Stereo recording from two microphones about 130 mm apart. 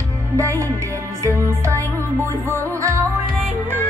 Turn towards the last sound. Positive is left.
turn(degrees=-25)  # may be behind; listen again after turning